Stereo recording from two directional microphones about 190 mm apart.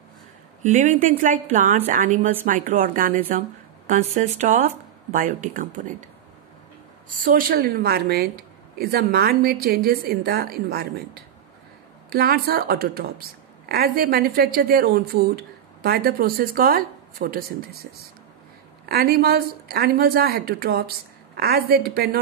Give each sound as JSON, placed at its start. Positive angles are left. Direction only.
{"t": 0.6, "sound": "a woman's voice", "side_deg": -40}
{"t": 5.1, "sound": "a woman's voice", "side_deg": -45}
{"t": 7.2, "sound": "a woman's voice", "side_deg": -50}
{"t": 18.9, "sound": "a woman's voice", "side_deg": -55}